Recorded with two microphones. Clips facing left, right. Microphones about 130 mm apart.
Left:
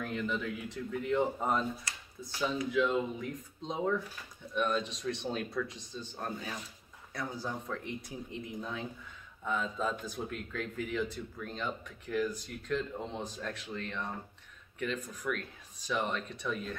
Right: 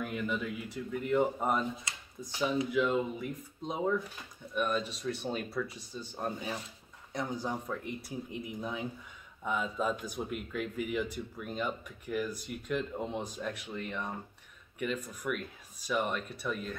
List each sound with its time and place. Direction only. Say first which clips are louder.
0.0 s speech: even; 10° right (ahead or behind)